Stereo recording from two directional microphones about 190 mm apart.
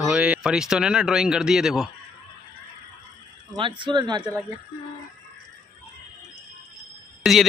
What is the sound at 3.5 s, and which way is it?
Speech, 25° right (ahead or behind).